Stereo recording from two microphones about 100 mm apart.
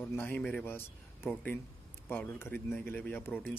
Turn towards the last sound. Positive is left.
turn(degrees=20)  # may be behind; listen again after turning